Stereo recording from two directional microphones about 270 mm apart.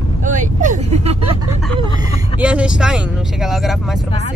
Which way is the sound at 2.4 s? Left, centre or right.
Centre.